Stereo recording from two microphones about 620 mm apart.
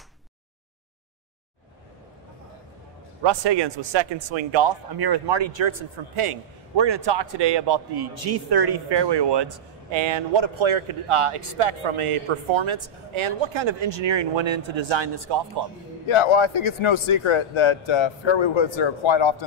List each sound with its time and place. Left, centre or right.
3.3 s a man's voice: right
6.8 s a man's voice: right
16.1 s a man's voice: left